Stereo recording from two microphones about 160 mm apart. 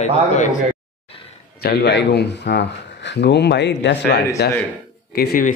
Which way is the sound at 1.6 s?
90° left.